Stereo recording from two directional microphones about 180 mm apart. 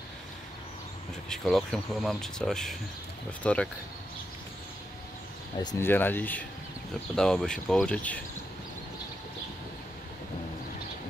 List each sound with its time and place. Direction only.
1.3 s speech: centre (ahead or behind)
5.6 s speech: 20° left (ahead or behind)
5.9 s speech: 10° left (ahead or behind)